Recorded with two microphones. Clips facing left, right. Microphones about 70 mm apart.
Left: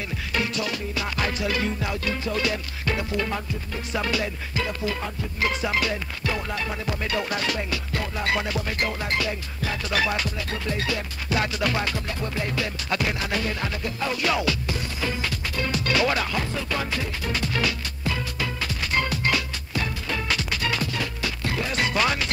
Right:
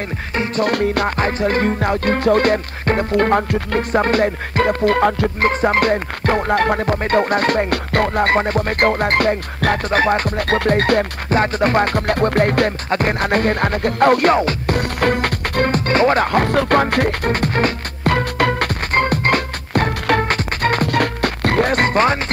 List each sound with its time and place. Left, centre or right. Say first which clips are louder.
0.6 s music: right 12 dB; right
3.9 s music: right 10 dB; right
5.4 s music: right 8 dB; right
14.8 s music: right 11 dB; right